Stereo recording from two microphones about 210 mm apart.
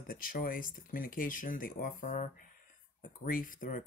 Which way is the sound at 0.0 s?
45° left (ahead or behind).